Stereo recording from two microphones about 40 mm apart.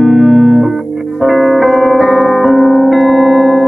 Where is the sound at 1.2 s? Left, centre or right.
Centre.